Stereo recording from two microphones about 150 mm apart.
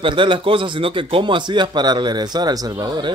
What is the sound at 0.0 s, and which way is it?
A man's voice, 35° right (ahead or behind).